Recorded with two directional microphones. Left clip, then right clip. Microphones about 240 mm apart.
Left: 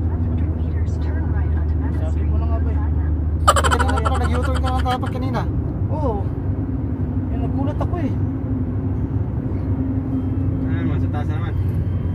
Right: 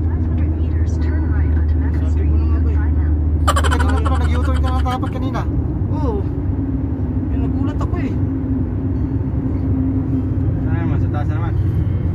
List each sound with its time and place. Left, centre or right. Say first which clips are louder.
3.4 s frog: left 3 dB; centre